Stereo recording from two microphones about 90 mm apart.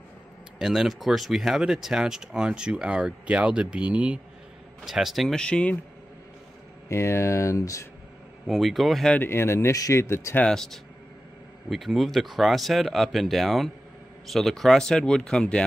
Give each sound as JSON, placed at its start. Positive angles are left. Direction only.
{"t": 0.6, "sound": "speech", "side_deg": -5}
{"t": 4.8, "sound": "speech", "side_deg": -5}
{"t": 5.4, "sound": "speech", "side_deg": 15}
{"t": 6.9, "sound": "speech", "side_deg": 30}
{"t": 8.5, "sound": "speech", "side_deg": 0}
{"t": 9.1, "sound": "speech", "side_deg": 25}
{"t": 10.4, "sound": "speech", "side_deg": 5}